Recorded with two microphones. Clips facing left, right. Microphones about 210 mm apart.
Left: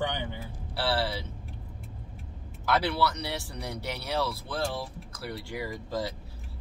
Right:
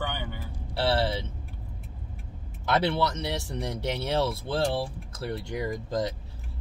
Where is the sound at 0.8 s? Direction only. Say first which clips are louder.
Right 3 dB; 25° right (ahead or behind).